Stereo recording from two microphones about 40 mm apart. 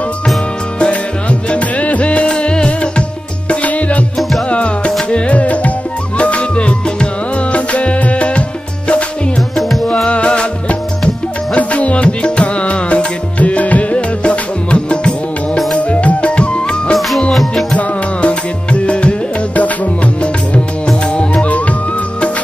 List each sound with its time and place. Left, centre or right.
1.5 s music: left
3.4 s music: left
10.0 s music: left
17.3 s music: centre
17.7 s music: left
21.2 s music: left